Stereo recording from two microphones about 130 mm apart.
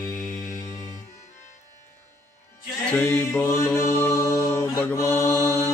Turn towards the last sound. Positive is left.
turn(degrees=15)  # may be behind; listen again after turning